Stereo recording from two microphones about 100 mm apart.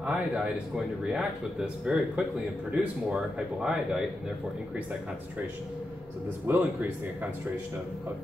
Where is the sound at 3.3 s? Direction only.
10° right (ahead or behind).